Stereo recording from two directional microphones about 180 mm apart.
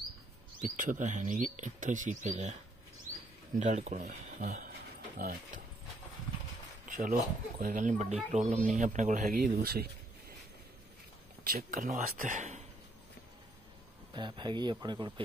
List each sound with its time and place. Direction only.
0.6 s speech: 45° right (ahead or behind)
3.5 s speech: 40° right (ahead or behind)
6.9 s speech: 50° right (ahead or behind)
11.4 s speech: 50° right (ahead or behind)
14.1 s speech: 25° right (ahead or behind)